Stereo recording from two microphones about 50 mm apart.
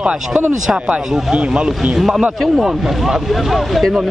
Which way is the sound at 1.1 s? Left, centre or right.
Centre.